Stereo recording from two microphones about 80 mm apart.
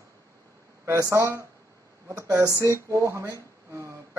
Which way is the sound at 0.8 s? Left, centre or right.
Right.